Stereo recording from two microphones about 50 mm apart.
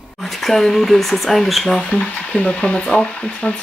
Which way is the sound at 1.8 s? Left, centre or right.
Left.